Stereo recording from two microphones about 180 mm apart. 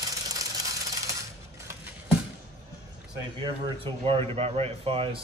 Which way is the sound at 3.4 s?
30° right (ahead or behind).